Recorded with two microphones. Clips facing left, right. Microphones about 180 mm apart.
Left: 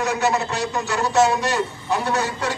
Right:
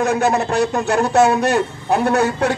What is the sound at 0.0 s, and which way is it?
A man's voice, 55° right (ahead or behind).